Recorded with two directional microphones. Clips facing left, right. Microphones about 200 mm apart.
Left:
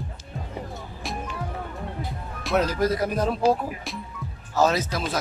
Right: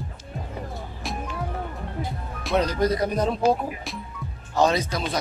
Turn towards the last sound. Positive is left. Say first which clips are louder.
# even
turn(degrees=5)  # may be behind; listen again after turning